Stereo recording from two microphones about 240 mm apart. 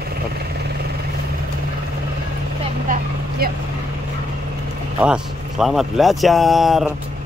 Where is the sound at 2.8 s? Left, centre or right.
Right.